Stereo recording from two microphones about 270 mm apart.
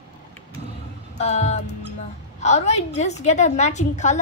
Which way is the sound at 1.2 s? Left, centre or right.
Left.